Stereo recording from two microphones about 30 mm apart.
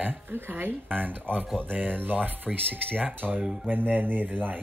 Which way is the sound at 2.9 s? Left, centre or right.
Right.